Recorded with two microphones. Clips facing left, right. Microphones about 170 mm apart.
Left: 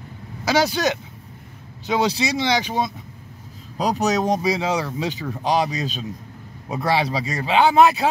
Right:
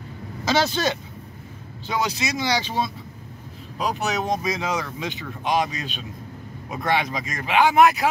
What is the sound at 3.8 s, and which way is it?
Speech, 40° left (ahead or behind).